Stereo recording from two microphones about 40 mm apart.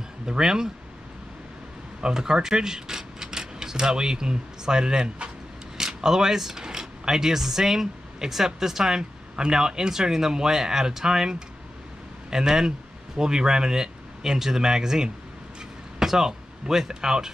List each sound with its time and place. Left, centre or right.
0.3 s speech: centre
2.0 s speech: centre